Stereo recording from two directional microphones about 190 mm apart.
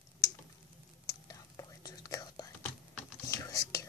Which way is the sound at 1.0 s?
20° left (ahead or behind).